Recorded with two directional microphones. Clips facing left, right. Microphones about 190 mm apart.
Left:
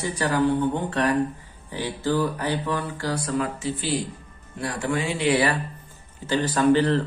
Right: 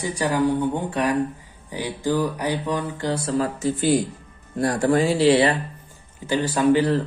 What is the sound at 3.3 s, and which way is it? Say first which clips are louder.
Speech: right 4 dB; 45° right (ahead or behind).